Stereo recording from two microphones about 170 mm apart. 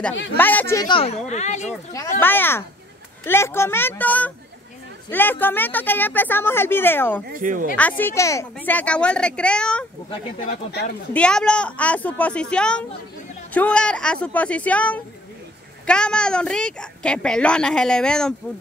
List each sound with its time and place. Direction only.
0.4 s speech: 10° left (ahead or behind)
0.8 s speech: 35° left (ahead or behind)
2.1 s speech: 10° left (ahead or behind)
7.3 s speech: 50° right (ahead or behind)
8.0 s speech: 15° left (ahead or behind)
11.1 s a woman's voice: 5° left (ahead or behind)